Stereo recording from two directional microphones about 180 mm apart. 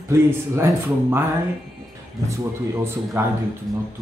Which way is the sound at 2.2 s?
15° right (ahead or behind).